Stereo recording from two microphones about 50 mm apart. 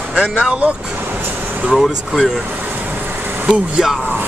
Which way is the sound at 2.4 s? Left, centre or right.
Right.